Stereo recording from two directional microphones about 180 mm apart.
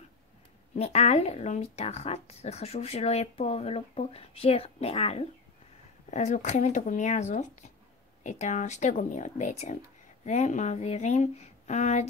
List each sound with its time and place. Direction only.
0.7 s speech: 35° left (ahead or behind)